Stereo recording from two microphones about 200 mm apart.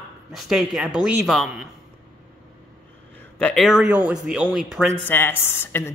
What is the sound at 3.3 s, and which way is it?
Speech, 5° left (ahead or behind).